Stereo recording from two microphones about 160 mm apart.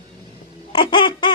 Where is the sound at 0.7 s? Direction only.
30° left (ahead or behind).